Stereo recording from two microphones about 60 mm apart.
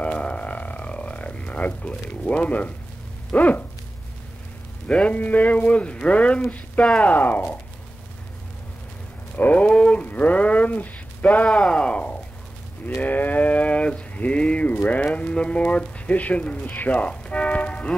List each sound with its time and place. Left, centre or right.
0.0 s music: centre
3.3 s speech: left
4.8 s speech: centre
7.1 s speech: left
9.4 s a sound: left
11.4 s a sound: centre